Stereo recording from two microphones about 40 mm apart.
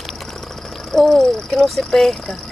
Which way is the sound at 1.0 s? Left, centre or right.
Centre.